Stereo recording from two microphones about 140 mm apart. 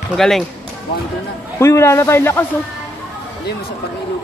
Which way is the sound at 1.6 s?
20° left (ahead or behind).